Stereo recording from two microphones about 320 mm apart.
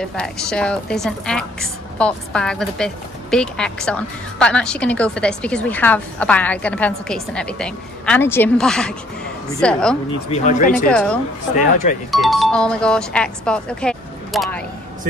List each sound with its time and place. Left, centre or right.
0.0 s a woman's voice: centre
10.3 s speech: left
10.9 s a woman's voice: centre
11.5 s speech: left
12.1 s a woman's voice: centre